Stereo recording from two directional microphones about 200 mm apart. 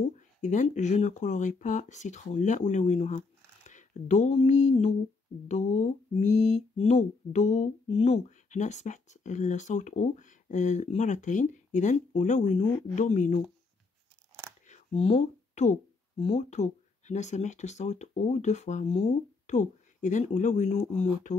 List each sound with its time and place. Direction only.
0.4 s mantra: 35° left (ahead or behind)
14.7 s speech: 30° left (ahead or behind)